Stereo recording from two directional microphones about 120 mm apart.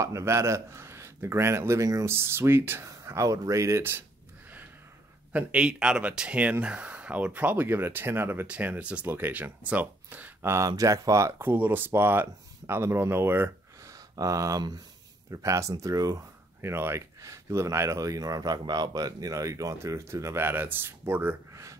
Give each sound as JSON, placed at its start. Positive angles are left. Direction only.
{"t": 0.0, "sound": "speech", "side_deg": -25}
{"t": 5.3, "sound": "speech", "side_deg": -10}
{"t": 13.9, "sound": "speech", "side_deg": -30}